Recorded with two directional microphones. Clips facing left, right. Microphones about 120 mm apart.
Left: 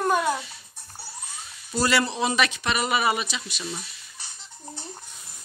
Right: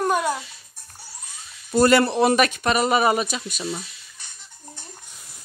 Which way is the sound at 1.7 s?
50° right (ahead or behind).